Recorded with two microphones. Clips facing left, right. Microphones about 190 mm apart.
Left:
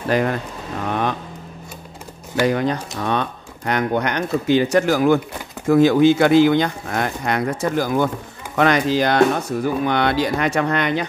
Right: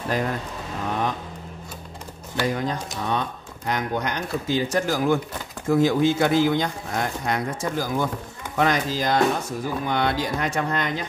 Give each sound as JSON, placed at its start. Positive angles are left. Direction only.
{"t": 0.1, "sound": "speech", "side_deg": 75}
{"t": 2.4, "sound": "speech", "side_deg": 70}